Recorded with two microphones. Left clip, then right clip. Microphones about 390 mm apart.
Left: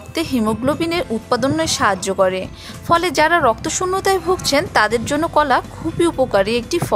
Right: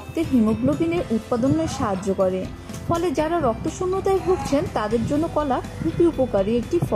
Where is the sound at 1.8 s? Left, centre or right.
Left.